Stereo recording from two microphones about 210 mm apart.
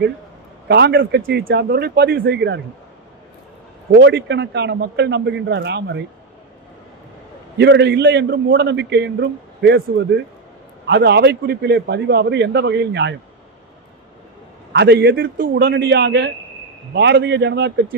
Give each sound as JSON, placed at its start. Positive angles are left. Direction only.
{"t": 0.7, "sound": "a man's voice", "side_deg": -50}
{"t": 4.0, "sound": "a man's voice", "side_deg": -55}
{"t": 7.5, "sound": "a man's voice", "side_deg": -55}
{"t": 14.7, "sound": "a man's voice", "side_deg": -55}